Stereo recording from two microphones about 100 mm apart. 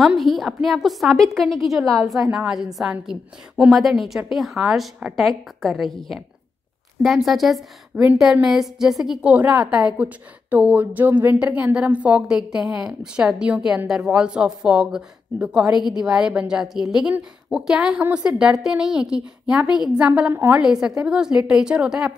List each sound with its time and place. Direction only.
0.0 s a woman's voice: centre (ahead or behind)
7.2 s a woman's voice: centre (ahead or behind)
7.9 s a woman's voice: 15° right (ahead or behind)
8.2 s a woman's voice: 5° right (ahead or behind)
9.3 s a woman's voice: 15° right (ahead or behind)
20.6 s a woman's voice: 5° right (ahead or behind)